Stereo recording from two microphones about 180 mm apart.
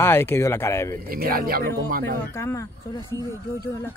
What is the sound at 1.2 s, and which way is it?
Speech, 55° right (ahead or behind).